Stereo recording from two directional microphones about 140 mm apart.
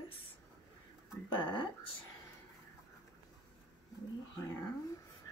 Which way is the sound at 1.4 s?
35° left (ahead or behind).